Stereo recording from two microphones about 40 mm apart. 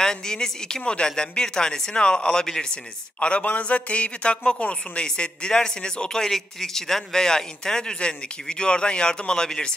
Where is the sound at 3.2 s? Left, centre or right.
Left.